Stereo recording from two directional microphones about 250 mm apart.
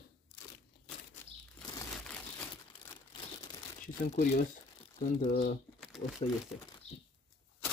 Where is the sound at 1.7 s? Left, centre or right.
Centre.